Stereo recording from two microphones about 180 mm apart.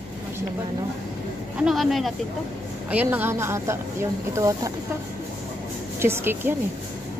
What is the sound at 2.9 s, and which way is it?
A woman's voice, 10° right (ahead or behind).